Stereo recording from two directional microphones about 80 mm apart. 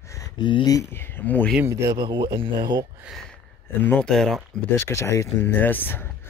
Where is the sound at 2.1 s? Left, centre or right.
Right.